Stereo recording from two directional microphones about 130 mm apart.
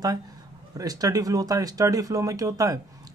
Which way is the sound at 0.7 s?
25° right (ahead or behind).